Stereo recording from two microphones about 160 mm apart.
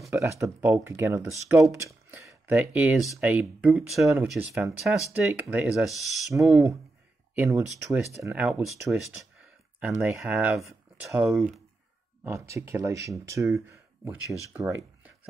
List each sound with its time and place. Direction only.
0.1 s speech: 15° right (ahead or behind); by 11.6 s centre (ahead or behind)
12.3 s speech: 20° right (ahead or behind)